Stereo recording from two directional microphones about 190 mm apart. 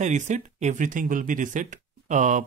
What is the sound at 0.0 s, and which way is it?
Speech, 40° right (ahead or behind).